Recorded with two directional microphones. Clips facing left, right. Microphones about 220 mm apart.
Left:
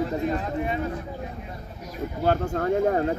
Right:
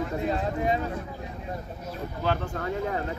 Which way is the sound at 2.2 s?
45° left (ahead or behind).